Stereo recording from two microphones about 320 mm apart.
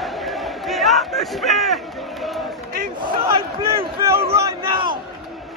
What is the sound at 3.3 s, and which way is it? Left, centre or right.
Speech, centre.